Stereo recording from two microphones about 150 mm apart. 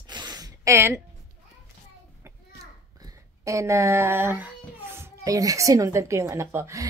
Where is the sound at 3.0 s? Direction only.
20° right (ahead or behind).